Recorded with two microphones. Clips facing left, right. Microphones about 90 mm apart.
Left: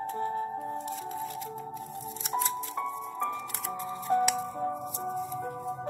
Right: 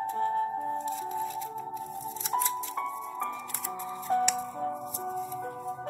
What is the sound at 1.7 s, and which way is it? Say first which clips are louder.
Music: right 2 dB; centre (ahead or behind).